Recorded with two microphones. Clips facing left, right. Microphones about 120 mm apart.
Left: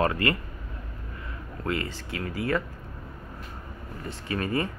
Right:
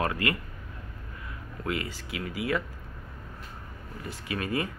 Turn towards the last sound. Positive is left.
turn(degrees=-5)  # may be behind; listen again after turning